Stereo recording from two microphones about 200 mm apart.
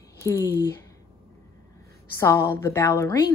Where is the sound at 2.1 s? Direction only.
15° left (ahead or behind).